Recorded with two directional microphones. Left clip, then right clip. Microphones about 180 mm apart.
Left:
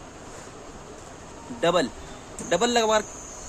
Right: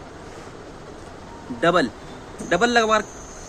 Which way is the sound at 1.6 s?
10° right (ahead or behind).